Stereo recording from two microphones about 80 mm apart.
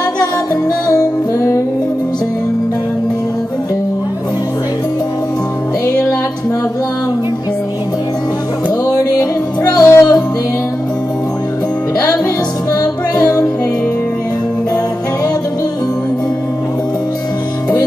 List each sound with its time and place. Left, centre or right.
0.8 s music: left
8.9 s music: left
12.8 s music: left